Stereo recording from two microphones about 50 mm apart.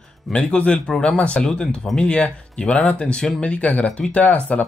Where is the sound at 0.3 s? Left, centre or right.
Left.